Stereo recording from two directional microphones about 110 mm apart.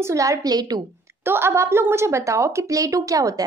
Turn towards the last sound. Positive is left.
turn(degrees=-30)  # may be behind; listen again after turning